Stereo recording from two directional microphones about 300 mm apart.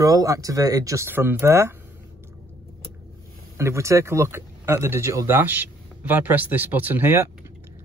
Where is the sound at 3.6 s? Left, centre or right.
Centre.